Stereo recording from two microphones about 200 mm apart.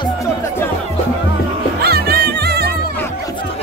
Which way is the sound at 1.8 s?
50° right (ahead or behind).